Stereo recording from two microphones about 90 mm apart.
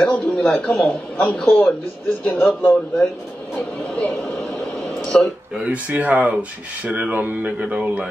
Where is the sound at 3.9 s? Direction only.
10° left (ahead or behind).